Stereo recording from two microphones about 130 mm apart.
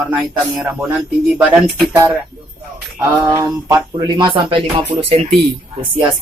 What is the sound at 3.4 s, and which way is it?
Speech, 25° right (ahead or behind).